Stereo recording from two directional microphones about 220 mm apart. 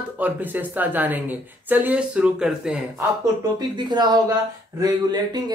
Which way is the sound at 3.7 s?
20° right (ahead or behind).